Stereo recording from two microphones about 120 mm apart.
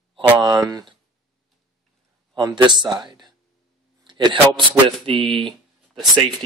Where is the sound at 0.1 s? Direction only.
45° right (ahead or behind).